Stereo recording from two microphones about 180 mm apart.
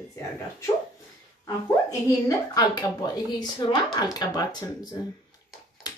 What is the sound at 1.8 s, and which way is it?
Speech, 20° left (ahead or behind).